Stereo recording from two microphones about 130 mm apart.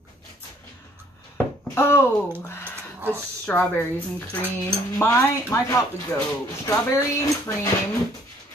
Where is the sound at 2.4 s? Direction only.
20° left (ahead or behind).